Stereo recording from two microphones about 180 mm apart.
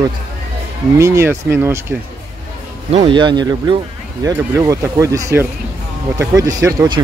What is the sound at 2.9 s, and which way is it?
Speech, 30° right (ahead or behind).